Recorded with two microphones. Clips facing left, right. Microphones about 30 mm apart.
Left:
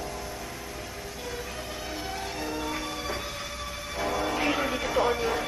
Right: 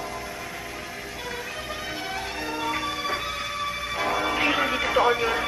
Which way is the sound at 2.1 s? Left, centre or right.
Right.